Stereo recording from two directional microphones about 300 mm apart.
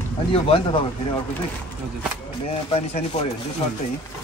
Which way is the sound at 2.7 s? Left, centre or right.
Left.